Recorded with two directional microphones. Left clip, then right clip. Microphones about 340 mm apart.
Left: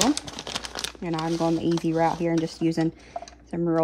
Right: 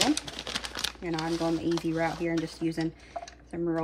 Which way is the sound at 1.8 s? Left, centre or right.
Left.